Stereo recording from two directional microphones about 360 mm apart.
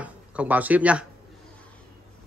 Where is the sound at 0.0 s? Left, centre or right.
Centre.